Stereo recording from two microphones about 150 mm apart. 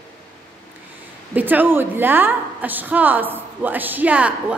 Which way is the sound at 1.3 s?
10° right (ahead or behind).